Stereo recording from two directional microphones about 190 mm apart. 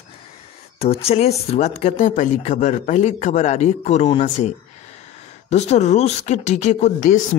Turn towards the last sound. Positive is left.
turn(degrees=40)  # may be behind; listen again after turning